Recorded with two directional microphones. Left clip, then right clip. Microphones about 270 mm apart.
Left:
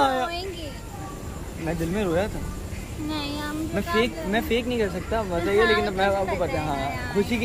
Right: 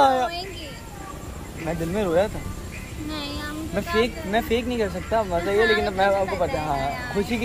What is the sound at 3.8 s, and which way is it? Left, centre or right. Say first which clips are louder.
Speech: right 2 dB; centre.